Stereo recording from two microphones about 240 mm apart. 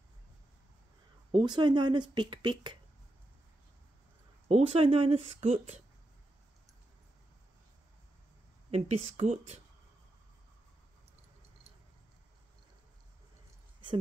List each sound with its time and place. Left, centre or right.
1.3 s speech: centre
4.5 s speech: right
8.6 s speech: right